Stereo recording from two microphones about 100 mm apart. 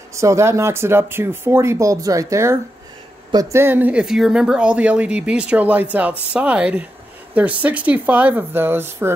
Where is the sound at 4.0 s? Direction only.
5° right (ahead or behind).